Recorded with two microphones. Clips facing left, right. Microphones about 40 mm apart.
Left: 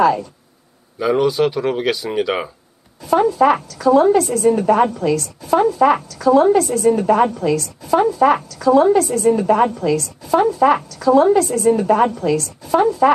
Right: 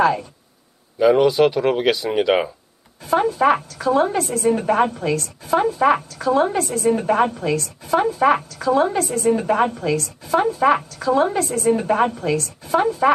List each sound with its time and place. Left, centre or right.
0.9 s speech: centre
3.1 s a woman's voice: right
3.3 s speech: centre
3.6 s a woman's voice: right